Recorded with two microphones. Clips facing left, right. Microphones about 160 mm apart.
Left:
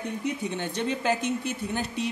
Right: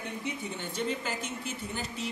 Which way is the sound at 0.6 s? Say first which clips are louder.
Left 4 dB; 70° left (ahead or behind).